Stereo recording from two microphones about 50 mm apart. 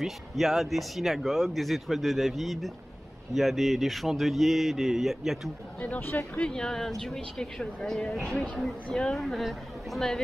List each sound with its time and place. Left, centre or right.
0.0 s speech: centre
5.9 s speech: left
6.4 s speech: centre